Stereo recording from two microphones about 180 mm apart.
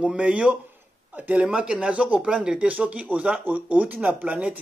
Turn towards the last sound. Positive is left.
turn(degrees=-10)  # may be behind; listen again after turning